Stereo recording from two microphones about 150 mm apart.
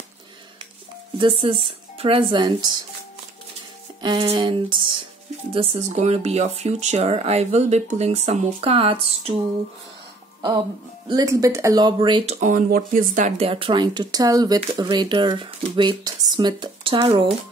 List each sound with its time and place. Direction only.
1.1 s speech: 35° right (ahead or behind)
4.0 s speech: 30° right (ahead or behind)
11.1 s speech: 25° right (ahead or behind)
12.3 s speech: 55° right (ahead or behind)
13.5 s speech: 35° right (ahead or behind)